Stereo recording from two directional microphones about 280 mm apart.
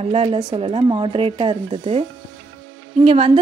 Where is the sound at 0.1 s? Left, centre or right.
Centre.